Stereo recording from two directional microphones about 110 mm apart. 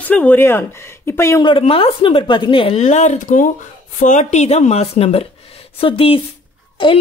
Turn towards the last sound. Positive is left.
turn(degrees=50)  # may be behind; listen again after turning